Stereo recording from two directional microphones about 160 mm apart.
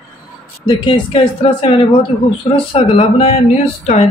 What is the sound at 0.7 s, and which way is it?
Speech, 30° left (ahead or behind).